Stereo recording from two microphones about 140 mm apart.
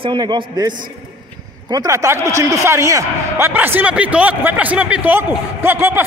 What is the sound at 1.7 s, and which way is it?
A man's voice, 25° right (ahead or behind).